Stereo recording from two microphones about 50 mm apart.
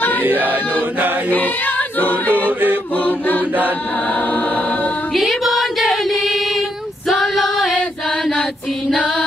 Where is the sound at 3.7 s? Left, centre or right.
Left.